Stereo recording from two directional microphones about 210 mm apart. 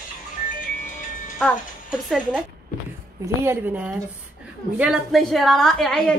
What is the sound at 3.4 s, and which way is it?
A woman's voice, 10° right (ahead or behind).